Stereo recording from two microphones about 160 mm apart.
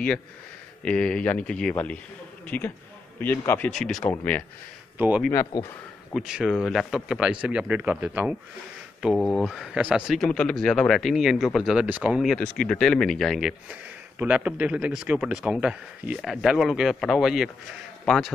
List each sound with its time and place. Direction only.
0.8 s speech: 5° left (ahead or behind)
4.9 s speech: 10° right (ahead or behind)
5.3 s speech: 20° left (ahead or behind)
6.1 s speech: 5° right (ahead or behind)
12.4 s speech: 5° left (ahead or behind)